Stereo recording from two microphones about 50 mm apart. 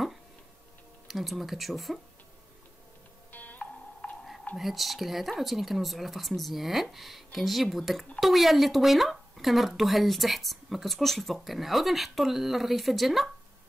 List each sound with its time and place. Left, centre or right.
1.0 s speech: centre
3.3 s music: left
4.6 s speech: centre